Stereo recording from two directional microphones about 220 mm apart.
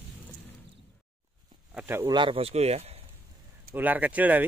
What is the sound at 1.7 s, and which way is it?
Speech, 10° right (ahead or behind).